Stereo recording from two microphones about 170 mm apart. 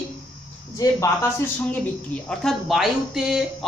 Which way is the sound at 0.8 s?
20° left (ahead or behind).